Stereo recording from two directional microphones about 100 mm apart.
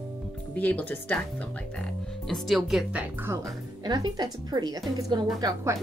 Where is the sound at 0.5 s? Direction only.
15° left (ahead or behind).